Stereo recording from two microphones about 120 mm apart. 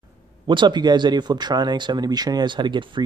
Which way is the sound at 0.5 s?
40° right (ahead or behind).